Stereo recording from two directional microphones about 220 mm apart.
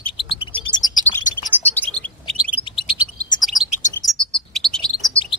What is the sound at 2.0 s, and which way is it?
Bird, 5° left (ahead or behind).